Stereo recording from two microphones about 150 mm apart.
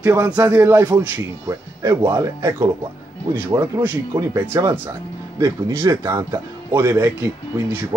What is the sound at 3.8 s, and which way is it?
Speech, 15° right (ahead or behind).